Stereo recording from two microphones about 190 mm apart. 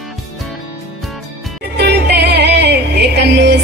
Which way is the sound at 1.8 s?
60° right (ahead or behind).